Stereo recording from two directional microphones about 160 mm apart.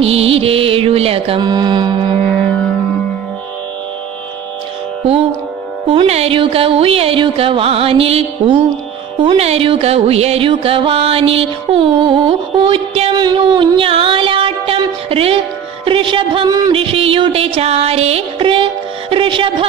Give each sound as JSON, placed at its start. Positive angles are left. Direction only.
{"t": 0.0, "sound": "music", "side_deg": -40}
{"t": 5.9, "sound": "music", "side_deg": -40}